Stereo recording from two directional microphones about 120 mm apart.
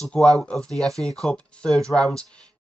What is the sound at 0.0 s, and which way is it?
Speech, 5° left (ahead or behind).